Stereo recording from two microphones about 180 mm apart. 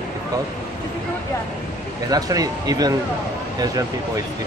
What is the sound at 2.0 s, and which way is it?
Speech, 20° right (ahead or behind).